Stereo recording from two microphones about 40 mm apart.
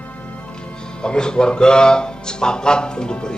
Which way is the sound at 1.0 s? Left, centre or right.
Left.